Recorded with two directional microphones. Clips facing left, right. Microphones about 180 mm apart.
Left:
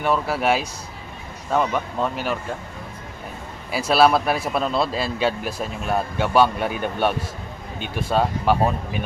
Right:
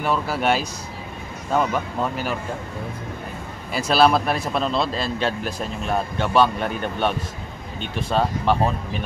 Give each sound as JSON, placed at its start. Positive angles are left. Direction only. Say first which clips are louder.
{"t": 0.0, "sound": "speech", "louder": "left 1 dB", "side_deg": 0}
{"t": 3.7, "sound": "speech", "louder": "left 1 dB", "side_deg": 5}